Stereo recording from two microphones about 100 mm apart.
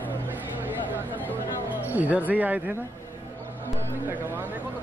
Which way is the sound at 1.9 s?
15° right (ahead or behind).